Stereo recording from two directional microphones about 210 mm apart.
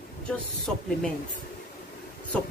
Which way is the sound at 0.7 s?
5° left (ahead or behind).